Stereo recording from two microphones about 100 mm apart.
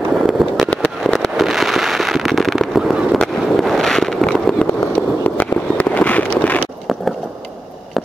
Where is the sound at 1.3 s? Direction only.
Centre (ahead or behind).